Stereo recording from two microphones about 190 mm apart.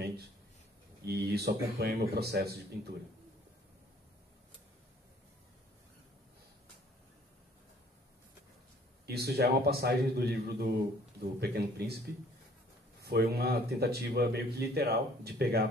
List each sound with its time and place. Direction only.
1.0 s speech: 55° right (ahead or behind)
9.0 s speech: 55° right (ahead or behind)
13.0 s speech: 55° right (ahead or behind)